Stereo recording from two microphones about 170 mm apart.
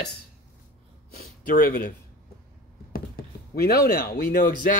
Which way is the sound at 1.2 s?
60° left (ahead or behind).